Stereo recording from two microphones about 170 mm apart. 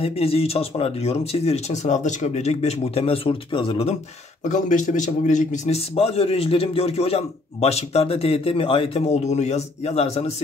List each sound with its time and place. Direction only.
0.0 s a man's voice: 35° left (ahead or behind)
4.5 s a man's voice: 45° left (ahead or behind)